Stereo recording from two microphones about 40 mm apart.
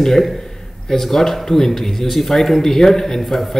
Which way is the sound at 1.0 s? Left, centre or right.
Centre.